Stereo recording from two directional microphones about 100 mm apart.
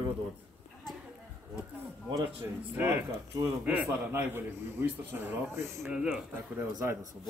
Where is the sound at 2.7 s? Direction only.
20° right (ahead or behind).